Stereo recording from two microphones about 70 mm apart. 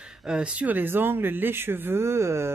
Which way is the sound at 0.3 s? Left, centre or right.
Centre.